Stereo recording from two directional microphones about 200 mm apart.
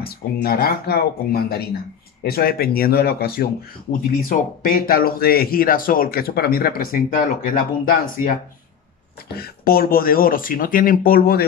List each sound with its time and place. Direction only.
0.0 s speech: 50° left (ahead or behind)